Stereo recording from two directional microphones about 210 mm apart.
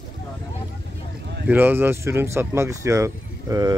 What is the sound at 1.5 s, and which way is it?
Speech, 10° right (ahead or behind).